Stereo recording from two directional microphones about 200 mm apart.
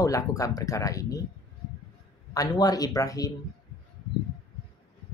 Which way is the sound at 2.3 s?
20° left (ahead or behind).